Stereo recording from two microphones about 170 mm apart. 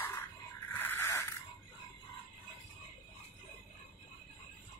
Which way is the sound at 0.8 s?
15° left (ahead or behind).